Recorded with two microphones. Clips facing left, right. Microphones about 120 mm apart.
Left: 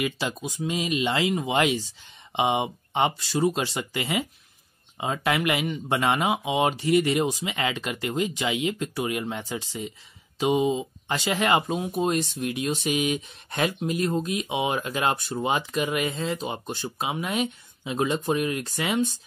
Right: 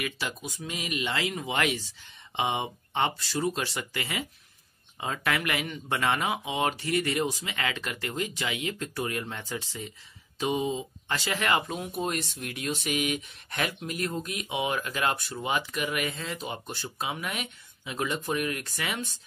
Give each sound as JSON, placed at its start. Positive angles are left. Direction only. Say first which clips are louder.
{"t": 0.0, "sound": "speech", "louder": "left 6 dB", "side_deg": 20}